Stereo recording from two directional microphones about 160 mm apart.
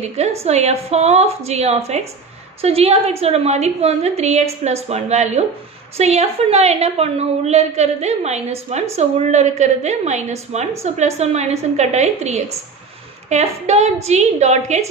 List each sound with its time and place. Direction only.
0.0 s a woman's voice: 40° right (ahead or behind)